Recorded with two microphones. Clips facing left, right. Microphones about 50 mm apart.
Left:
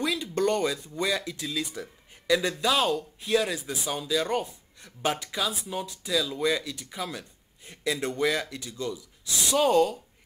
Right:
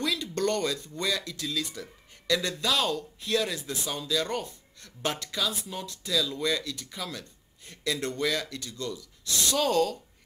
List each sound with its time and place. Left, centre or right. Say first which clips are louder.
0.0 s speech: left 2 dB; centre